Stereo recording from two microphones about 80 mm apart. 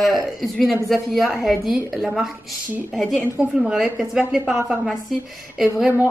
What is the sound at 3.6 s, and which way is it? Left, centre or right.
A woman's voice, centre.